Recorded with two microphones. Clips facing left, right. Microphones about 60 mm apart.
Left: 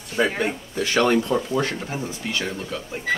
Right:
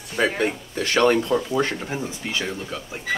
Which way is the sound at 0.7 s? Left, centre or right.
Right.